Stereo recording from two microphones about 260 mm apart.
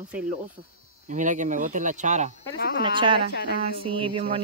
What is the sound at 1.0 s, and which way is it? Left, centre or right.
Speech, right.